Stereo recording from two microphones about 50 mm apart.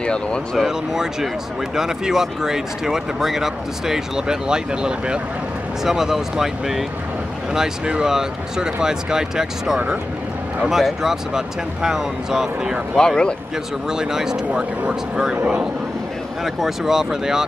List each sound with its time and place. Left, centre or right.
0.0 s speech: centre
0.7 s speech: centre
12.9 s speech: centre
13.8 s speech: centre
14.5 s speech: right
16.4 s speech: centre